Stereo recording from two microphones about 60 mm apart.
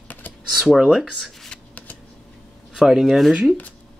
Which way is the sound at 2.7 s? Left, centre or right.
Centre.